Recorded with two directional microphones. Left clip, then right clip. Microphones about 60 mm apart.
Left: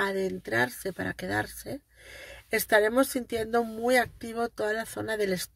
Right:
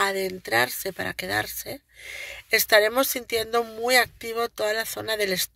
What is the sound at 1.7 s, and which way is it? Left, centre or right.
Speech, left.